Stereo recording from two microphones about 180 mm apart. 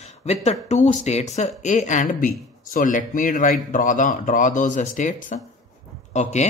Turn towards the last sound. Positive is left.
turn(degrees=40)  # may be behind; listen again after turning